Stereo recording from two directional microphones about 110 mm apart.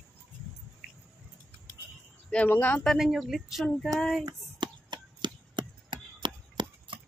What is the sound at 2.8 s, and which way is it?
Speech, centre (ahead or behind).